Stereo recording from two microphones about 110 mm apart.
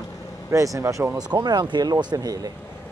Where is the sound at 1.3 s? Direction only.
40° right (ahead or behind).